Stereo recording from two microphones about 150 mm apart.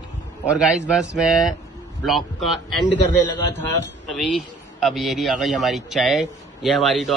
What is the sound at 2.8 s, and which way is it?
Speech, 30° left (ahead or behind).